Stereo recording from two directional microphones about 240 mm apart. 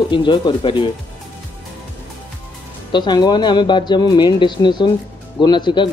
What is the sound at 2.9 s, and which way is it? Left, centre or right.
Speech, centre.